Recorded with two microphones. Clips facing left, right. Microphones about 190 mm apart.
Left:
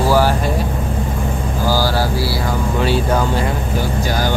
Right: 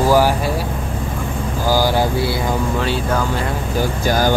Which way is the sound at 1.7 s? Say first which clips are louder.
Right 2 dB; 15° right (ahead or behind).